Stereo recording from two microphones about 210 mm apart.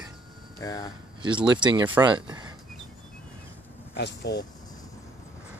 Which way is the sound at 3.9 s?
55° left (ahead or behind).